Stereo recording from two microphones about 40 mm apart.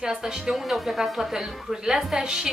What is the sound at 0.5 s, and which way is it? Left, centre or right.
A woman's voice, centre.